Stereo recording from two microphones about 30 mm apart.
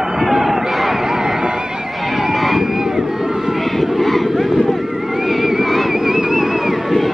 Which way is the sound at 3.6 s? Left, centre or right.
Centre.